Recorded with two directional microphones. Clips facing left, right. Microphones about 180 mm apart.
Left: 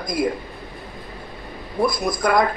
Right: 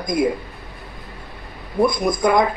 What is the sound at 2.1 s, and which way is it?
Speech, 20° right (ahead or behind).